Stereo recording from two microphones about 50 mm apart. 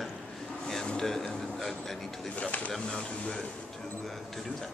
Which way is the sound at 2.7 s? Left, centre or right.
Centre.